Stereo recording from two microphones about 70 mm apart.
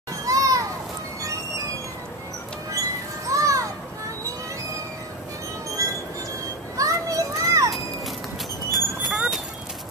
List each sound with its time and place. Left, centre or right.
0.2 s children playing: right
3.3 s children playing: right
5.8 s train: right
6.8 s children playing: right
8.7 s horse: centre